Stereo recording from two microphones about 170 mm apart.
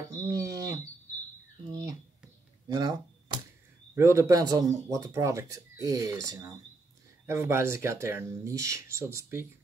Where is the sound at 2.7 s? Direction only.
25° right (ahead or behind).